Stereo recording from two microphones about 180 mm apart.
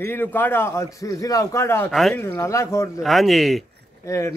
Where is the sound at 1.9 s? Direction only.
Centre (ahead or behind).